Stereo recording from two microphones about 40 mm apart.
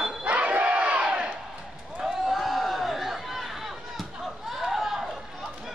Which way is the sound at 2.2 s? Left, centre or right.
Centre.